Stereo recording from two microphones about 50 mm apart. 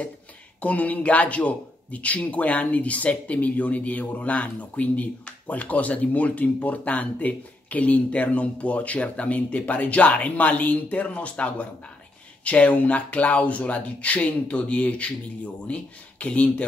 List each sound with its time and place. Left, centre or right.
0.6 s speech: left